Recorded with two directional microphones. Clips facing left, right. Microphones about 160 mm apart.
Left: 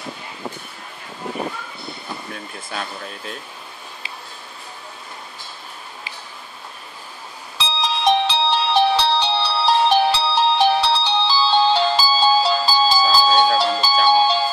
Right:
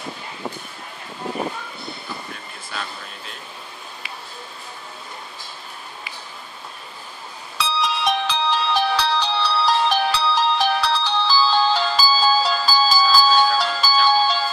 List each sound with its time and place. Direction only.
2.7 s speech: 45° left (ahead or behind)
7.5 s music: 25° left (ahead or behind)